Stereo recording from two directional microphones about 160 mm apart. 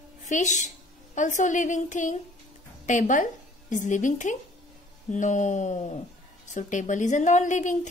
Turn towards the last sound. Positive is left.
turn(degrees=50)  # may be behind; listen again after turning